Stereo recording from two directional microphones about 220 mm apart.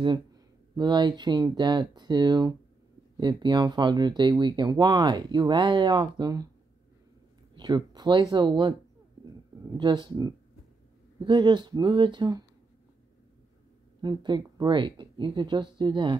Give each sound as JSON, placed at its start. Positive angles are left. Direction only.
{"t": 0.0, "sound": "speech", "side_deg": -20}
{"t": 7.5, "sound": "speech", "side_deg": -20}
{"t": 9.8, "sound": "speech", "side_deg": -20}
{"t": 14.0, "sound": "speech", "side_deg": -20}